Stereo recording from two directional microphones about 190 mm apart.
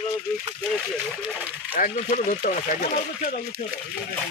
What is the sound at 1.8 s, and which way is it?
Speech, 45° left (ahead or behind).